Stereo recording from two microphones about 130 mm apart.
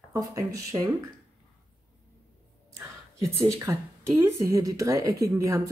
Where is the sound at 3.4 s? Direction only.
20° right (ahead or behind).